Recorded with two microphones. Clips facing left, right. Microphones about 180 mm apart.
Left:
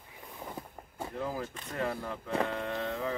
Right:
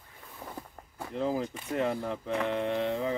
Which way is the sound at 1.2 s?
20° right (ahead or behind).